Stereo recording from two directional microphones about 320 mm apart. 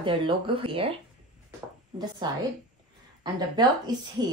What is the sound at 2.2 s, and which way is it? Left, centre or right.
Speech, centre.